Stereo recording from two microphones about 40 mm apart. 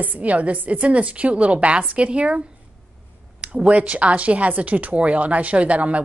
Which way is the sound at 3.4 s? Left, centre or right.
Right.